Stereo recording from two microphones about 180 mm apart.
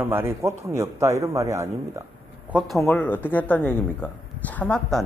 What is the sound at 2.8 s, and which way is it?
Speech, 10° left (ahead or behind).